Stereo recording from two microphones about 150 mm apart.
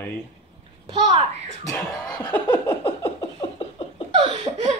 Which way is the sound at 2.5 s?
35° left (ahead or behind).